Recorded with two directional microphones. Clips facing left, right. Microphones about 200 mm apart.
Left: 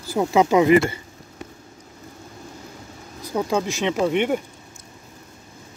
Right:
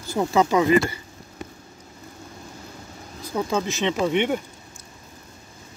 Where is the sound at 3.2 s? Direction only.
15° left (ahead or behind).